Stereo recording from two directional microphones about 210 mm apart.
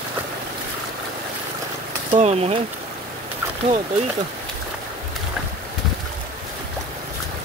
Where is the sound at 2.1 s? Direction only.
30° right (ahead or behind).